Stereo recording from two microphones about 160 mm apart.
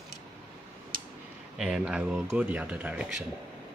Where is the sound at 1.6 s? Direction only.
5° right (ahead or behind).